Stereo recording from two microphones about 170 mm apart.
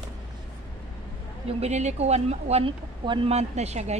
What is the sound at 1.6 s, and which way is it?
Speech, 40° right (ahead or behind).